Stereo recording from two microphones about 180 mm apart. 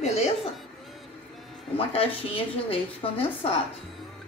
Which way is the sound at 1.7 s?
30° left (ahead or behind).